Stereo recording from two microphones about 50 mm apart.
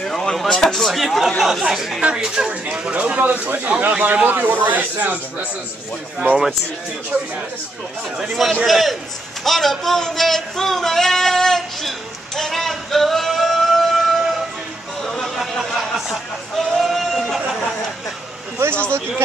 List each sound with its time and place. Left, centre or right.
0.0 s speech: centre
2.7 s speech: right
8.2 s speech: centre
12.4 s singing: centre
15.3 s a sound: centre
18.6 s a sound: right